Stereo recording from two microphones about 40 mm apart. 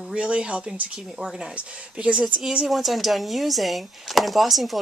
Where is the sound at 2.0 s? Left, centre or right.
Right.